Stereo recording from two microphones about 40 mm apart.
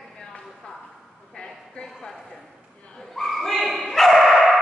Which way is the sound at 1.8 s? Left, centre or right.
Centre.